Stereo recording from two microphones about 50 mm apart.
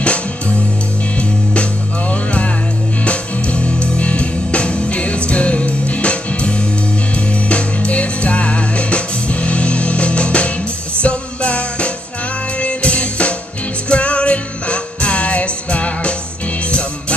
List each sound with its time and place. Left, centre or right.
1.5 s music: left